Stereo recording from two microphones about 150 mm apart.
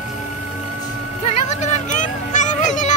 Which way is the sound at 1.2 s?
50° left (ahead or behind).